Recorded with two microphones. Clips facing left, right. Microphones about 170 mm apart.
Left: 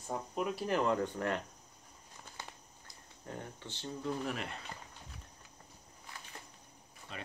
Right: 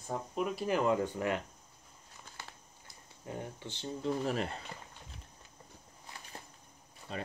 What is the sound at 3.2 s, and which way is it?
Speech, 15° right (ahead or behind).